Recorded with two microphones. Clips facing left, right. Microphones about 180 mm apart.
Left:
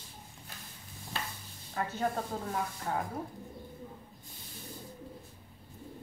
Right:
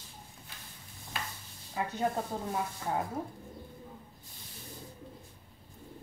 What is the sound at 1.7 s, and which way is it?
A woman's voice, 15° right (ahead or behind).